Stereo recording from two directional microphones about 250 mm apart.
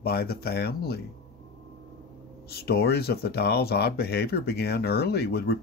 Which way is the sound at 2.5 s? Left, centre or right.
Left.